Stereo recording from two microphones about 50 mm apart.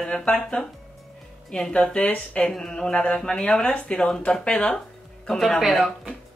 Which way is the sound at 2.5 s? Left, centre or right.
Centre.